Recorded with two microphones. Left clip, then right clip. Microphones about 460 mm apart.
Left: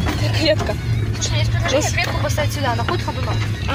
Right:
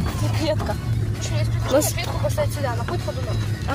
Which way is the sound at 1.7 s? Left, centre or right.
Right.